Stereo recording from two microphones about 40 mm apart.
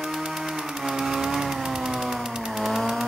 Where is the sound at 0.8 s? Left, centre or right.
Centre.